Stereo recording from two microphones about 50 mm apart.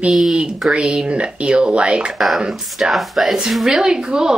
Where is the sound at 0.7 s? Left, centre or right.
Centre.